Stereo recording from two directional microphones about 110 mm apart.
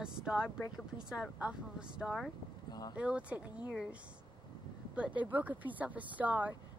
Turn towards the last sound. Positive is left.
turn(degrees=-15)  # may be behind; listen again after turning